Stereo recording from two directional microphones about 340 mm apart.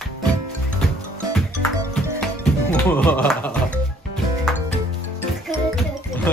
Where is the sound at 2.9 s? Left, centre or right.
Centre.